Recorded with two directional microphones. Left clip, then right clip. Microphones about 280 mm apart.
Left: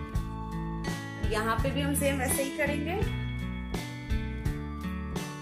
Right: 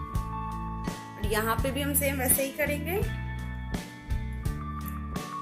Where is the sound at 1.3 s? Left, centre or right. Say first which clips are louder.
Right 1 dB; right.